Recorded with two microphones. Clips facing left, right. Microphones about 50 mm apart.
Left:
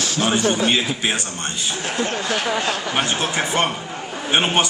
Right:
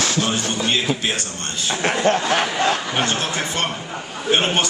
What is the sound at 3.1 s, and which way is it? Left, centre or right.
A man's voice, centre.